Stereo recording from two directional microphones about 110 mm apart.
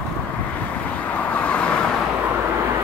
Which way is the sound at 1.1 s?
10° left (ahead or behind).